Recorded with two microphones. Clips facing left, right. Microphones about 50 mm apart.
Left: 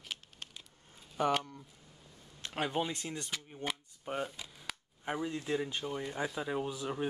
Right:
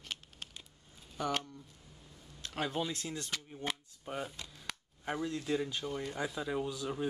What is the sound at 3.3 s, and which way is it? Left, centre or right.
Speech, centre.